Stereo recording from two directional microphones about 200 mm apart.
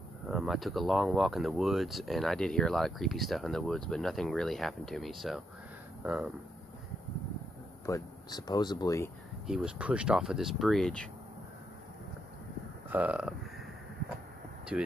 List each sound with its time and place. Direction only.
0.3 s speech: centre (ahead or behind)
7.8 s speech: 15° left (ahead or behind)
9.5 s speech: 5° right (ahead or behind)
12.9 s burping: 5° right (ahead or behind)
14.7 s speech: 5° right (ahead or behind)